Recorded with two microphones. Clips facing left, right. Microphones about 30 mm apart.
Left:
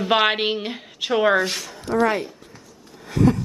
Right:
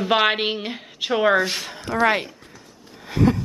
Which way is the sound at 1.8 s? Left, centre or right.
Right.